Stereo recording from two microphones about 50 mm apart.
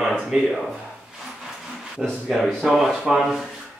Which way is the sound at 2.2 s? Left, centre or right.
Centre.